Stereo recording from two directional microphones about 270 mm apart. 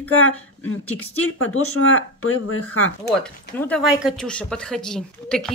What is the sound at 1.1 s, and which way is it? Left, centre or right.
Speech, left.